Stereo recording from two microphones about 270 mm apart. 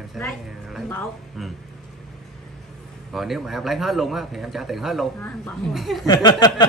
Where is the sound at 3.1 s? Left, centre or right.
Centre.